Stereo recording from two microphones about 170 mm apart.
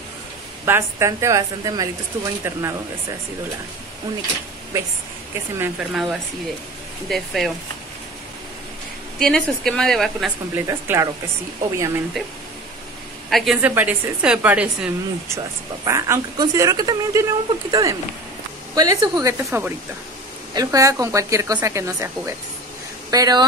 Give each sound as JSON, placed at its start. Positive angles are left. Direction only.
{"t": 0.7, "sound": "a woman's voice", "side_deg": -15}
{"t": 5.6, "sound": "a woman's voice", "side_deg": -5}
{"t": 9.2, "sound": "a woman's voice", "side_deg": 5}
{"t": 10.5, "sound": "a woman's voice", "side_deg": -15}
{"t": 13.3, "sound": "a woman's voice", "side_deg": 0}
{"t": 15.3, "sound": "a woman's voice", "side_deg": -20}